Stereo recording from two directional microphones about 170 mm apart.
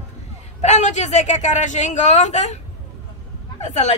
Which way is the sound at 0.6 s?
40° left (ahead or behind).